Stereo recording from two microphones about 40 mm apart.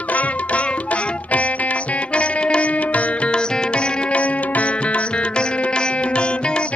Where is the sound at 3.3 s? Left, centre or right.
Left.